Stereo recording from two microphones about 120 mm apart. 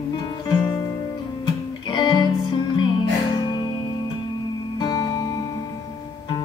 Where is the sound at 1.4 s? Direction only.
40° left (ahead or behind).